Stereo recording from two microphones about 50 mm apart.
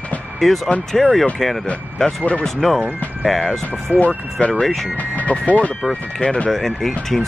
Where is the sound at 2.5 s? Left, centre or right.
Centre.